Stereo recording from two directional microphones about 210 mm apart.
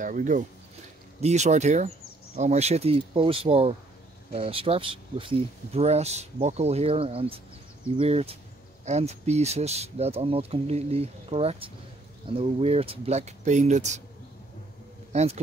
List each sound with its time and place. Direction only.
0.0 s speech: 40° right (ahead or behind)
15.1 s speech: 30° right (ahead or behind)